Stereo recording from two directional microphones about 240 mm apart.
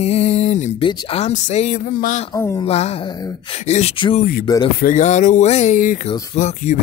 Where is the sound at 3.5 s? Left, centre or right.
Left.